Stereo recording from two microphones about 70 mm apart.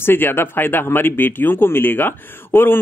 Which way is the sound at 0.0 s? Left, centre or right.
Left.